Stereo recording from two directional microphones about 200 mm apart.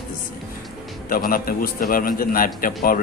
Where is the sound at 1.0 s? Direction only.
45° left (ahead or behind).